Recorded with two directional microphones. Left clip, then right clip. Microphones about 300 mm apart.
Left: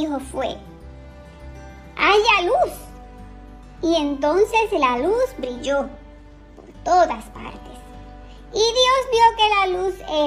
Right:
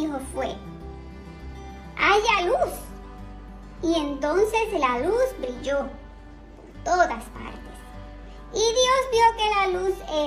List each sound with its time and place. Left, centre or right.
0.0 s a child's voice: centre
2.0 s music: centre
3.8 s a child's voice: centre